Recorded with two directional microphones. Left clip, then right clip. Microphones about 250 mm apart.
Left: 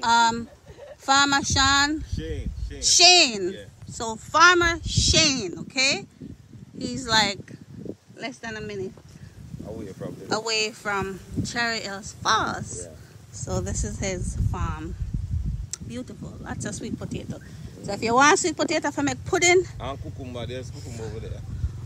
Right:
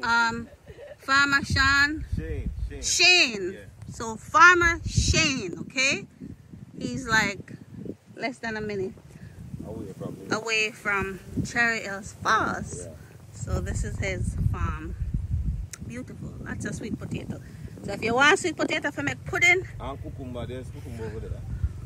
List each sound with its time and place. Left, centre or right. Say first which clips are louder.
0.0 s speech: left 4 dB; centre
2.1 s a sound: left 2 dB; centre
2.8 s speech: left 3 dB; centre
10.2 s speech: left 1 dB; centre
19.8 s speech: left 3 dB; right